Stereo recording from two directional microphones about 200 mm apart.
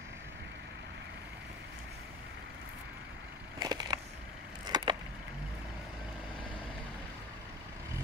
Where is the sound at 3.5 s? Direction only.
20° right (ahead or behind).